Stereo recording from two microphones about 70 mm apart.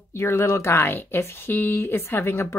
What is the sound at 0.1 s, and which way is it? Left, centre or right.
Speech, left.